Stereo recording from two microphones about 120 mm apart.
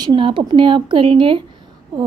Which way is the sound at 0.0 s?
40° right (ahead or behind).